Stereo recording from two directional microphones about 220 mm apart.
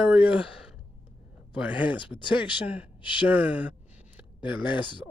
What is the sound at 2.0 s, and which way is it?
Speech, 20° left (ahead or behind).